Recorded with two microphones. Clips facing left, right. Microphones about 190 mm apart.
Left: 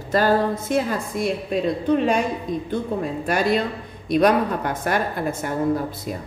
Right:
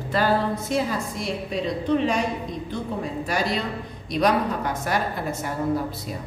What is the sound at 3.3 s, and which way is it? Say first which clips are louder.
A woman's voice: left 6 dB; 55° left (ahead or behind).